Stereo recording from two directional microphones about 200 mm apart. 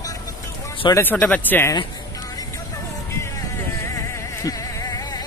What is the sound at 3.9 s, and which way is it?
Music, 15° left (ahead or behind).